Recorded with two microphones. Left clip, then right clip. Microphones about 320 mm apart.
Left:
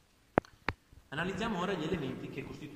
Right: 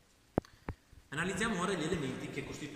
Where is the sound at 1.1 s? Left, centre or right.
Centre.